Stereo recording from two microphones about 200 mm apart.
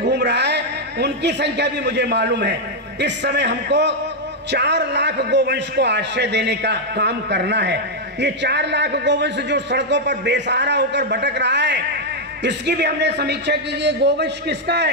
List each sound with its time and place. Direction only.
0.0 s a man's voice: 55° right (ahead or behind)